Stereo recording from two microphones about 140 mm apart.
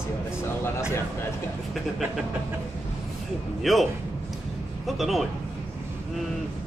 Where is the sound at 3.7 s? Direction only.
Centre (ahead or behind).